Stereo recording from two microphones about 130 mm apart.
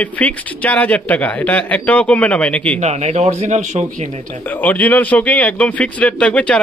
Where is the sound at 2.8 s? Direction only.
60° right (ahead or behind).